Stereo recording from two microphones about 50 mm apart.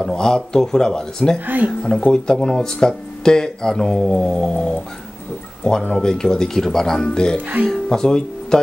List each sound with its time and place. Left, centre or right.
0.0 s speech: centre
1.4 s speech: right
2.1 s speech: centre